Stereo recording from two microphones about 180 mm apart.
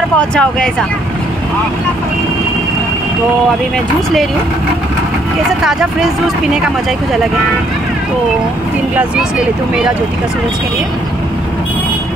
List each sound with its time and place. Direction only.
0.2 s speech: 5° left (ahead or behind)
5.6 s speech: centre (ahead or behind)